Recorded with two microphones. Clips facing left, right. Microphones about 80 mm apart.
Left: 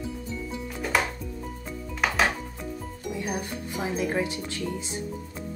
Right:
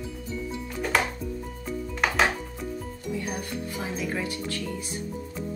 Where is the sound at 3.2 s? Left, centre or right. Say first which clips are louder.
Left 1 dB; centre.